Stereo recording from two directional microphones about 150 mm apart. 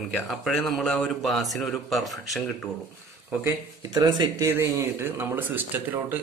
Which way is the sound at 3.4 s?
25° right (ahead or behind).